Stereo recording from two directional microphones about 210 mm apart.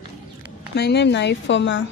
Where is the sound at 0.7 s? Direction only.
50° left (ahead or behind).